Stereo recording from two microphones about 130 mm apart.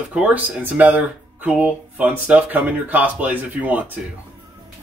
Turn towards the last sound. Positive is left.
turn(degrees=-10)  # may be behind; listen again after turning